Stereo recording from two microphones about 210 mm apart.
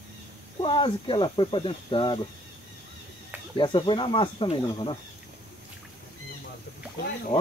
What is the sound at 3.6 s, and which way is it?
Speech, 25° left (ahead or behind).